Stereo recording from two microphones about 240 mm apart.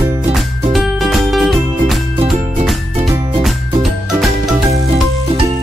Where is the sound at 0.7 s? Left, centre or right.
Centre.